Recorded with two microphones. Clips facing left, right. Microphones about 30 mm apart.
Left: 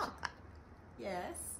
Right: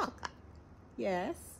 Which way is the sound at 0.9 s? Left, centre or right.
Right.